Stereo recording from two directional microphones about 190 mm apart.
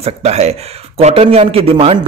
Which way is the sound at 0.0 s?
35° right (ahead or behind).